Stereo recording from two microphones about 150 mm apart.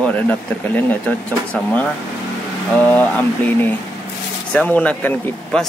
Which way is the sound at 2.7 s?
10° left (ahead or behind).